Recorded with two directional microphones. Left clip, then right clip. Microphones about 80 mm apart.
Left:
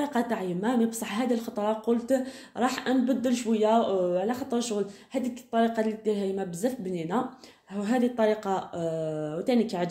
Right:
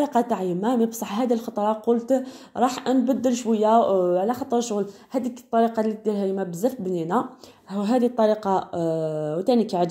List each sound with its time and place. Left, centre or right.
0.0 s a woman's voice: right
3.5 s a woman's voice: right
7.8 s speech: right